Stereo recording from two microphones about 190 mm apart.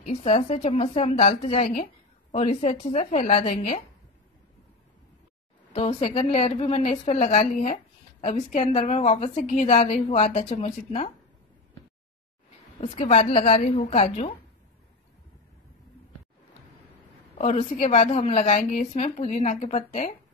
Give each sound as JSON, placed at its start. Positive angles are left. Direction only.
{"t": 0.0, "sound": "a woman's voice", "side_deg": 30}
{"t": 5.7, "sound": "a woman's voice", "side_deg": 30}
{"t": 12.8, "sound": "a woman's voice", "side_deg": 30}
{"t": 17.4, "sound": "a woman's voice", "side_deg": 35}